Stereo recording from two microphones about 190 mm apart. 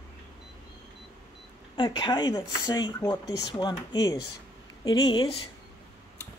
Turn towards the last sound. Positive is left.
turn(degrees=25)  # may be behind; listen again after turning